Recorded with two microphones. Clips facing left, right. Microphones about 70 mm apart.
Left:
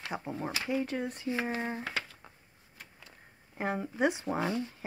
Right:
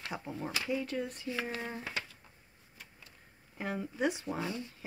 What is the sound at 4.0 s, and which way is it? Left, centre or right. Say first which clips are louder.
Speech: left 4 dB; left.